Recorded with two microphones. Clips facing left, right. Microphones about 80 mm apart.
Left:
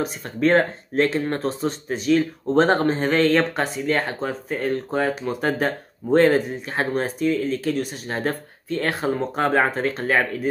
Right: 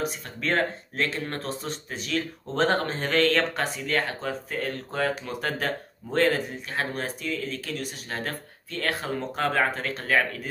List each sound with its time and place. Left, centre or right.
0.4 s speech: left